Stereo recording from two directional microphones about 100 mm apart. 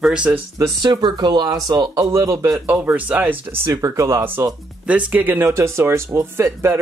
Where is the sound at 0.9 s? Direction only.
45° right (ahead or behind); by 2.6 s 30° right (ahead or behind).